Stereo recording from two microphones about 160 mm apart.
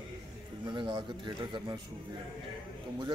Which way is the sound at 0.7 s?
30° right (ahead or behind).